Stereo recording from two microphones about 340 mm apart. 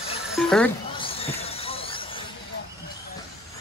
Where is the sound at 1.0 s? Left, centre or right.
Centre.